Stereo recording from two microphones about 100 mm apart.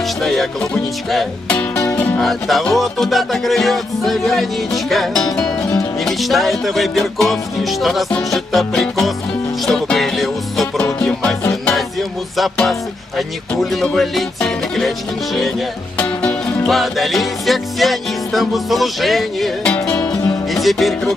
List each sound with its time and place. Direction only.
0.2 s music: 5° left (ahead or behind)
1.9 s music: 10° left (ahead or behind)
12.4 s music: 5° left (ahead or behind)
16.0 s music: 10° left (ahead or behind)
19.6 s music: 15° left (ahead or behind)
20.5 s music: centre (ahead or behind)